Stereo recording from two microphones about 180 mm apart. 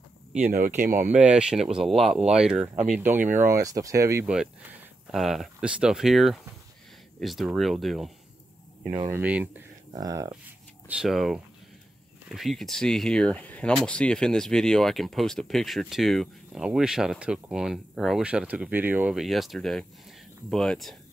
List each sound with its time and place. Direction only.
0.5 s speech: 50° right (ahead or behind)
1.0 s speech: 5° right (ahead or behind)
5.1 s speech: centre (ahead or behind)
8.9 s speech: 20° right (ahead or behind)
9.2 s speech: 10° right (ahead or behind)
10.9 s speech: 5° right (ahead or behind)